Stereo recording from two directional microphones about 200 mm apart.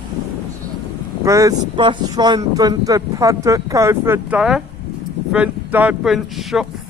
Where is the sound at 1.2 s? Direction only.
15° right (ahead or behind).